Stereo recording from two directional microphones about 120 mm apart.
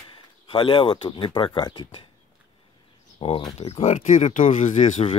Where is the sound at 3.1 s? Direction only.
45° left (ahead or behind).